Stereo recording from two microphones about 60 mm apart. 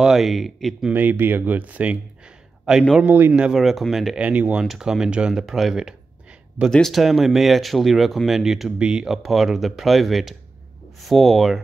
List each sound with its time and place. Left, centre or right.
0.0 s speech: centre
0.9 s speech: right
3.1 s speech: right
3.5 s speech: centre
4.2 s speech: right
4.6 s speech: centre
6.6 s speech: right
6.9 s speech: centre
9.1 s speech: centre